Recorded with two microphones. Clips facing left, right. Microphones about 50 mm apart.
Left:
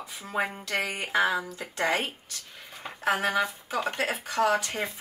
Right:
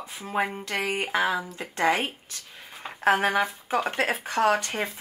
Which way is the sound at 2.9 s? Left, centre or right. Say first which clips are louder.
Right 4 dB; right.